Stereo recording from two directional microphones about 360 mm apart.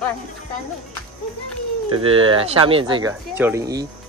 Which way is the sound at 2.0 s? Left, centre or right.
Centre.